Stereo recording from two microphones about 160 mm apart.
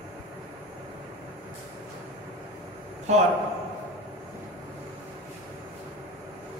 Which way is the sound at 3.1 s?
45° right (ahead or behind).